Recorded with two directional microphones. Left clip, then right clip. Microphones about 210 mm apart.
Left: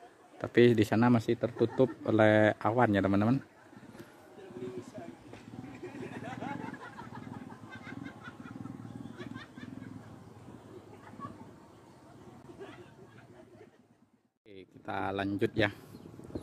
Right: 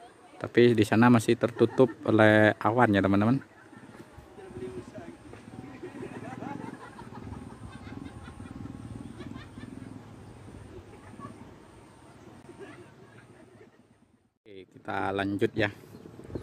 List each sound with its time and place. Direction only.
0.4 s speech: centre (ahead or behind)
6.1 s vehicle: 25° left (ahead or behind)
9.2 s vehicle: 35° left (ahead or behind)
14.5 s a sound: 5° right (ahead or behind)